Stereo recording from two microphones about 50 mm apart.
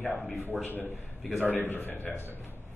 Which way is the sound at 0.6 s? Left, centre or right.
Left.